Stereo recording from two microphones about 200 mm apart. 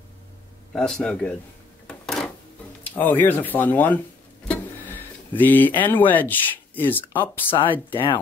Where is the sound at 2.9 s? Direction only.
10° left (ahead or behind).